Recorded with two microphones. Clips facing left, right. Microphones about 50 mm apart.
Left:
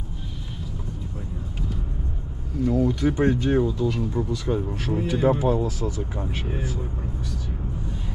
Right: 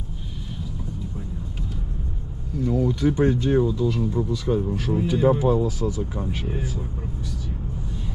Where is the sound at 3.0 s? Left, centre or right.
Left.